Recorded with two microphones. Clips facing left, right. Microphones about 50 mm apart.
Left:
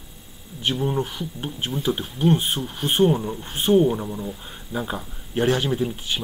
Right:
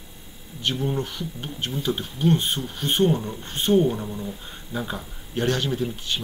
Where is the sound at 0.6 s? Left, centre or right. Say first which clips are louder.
Left 2 dB; centre.